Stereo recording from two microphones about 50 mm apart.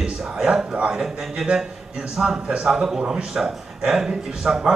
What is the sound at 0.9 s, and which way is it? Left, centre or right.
Speech, centre.